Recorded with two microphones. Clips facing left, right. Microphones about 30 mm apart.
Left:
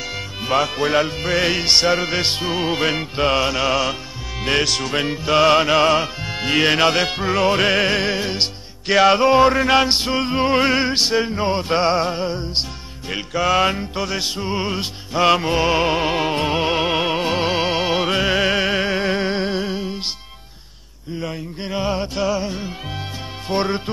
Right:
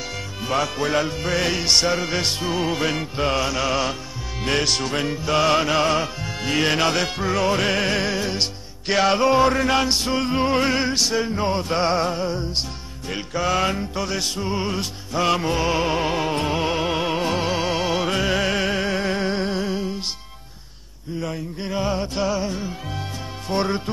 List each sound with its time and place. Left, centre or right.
0.4 s music: left
4.6 s music: centre
4.9 s music: left
8.8 s music: centre
9.1 s music: left
13.3 s music: centre
13.6 s music: left
21.2 s music: left
22.1 s music: centre
22.4 s music: left